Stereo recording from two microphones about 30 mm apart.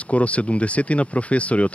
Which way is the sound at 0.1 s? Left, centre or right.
Left.